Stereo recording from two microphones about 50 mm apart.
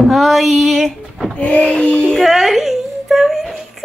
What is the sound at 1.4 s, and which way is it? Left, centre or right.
Child singing, left.